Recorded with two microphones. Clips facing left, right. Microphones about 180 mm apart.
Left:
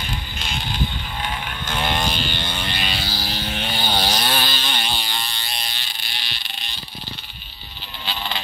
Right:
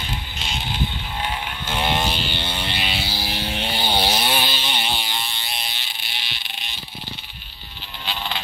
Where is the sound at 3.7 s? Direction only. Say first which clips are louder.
Right 1 dB; 10° right (ahead or behind).